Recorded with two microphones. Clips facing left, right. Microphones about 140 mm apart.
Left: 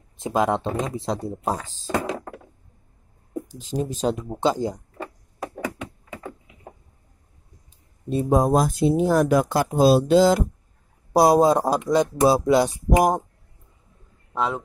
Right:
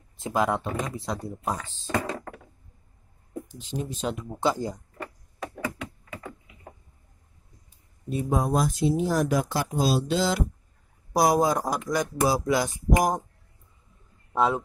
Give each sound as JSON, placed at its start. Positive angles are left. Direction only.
{"t": 0.2, "sound": "speech", "side_deg": 20}
{"t": 3.4, "sound": "speech", "side_deg": 40}
{"t": 4.4, "sound": "speech", "side_deg": 20}
{"t": 8.1, "sound": "speech", "side_deg": 35}
{"t": 11.1, "sound": "speech", "side_deg": 25}
{"t": 14.3, "sound": "a man's voice", "side_deg": -10}